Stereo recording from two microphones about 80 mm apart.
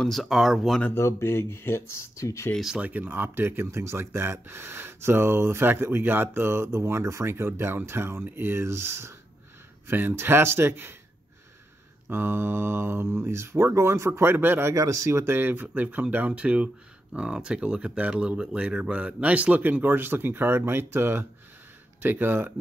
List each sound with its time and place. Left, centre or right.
0.0 s speech: centre
0.9 s speech: left
2.8 s speech: right
12.1 s speech: right
14.8 s speech: right
15.3 s speech: right